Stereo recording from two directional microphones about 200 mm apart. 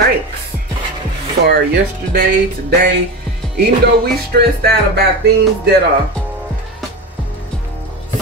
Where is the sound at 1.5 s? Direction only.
55° right (ahead or behind).